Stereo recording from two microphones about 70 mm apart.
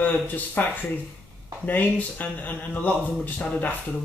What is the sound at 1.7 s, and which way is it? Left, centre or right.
Speech, left.